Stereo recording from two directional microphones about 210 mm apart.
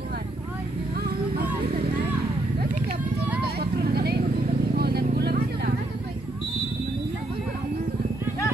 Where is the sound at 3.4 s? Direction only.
50° right (ahead or behind).